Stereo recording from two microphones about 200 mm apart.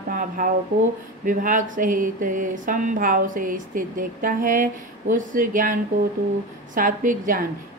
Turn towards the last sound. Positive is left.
turn(degrees=-40)  # may be behind; listen again after turning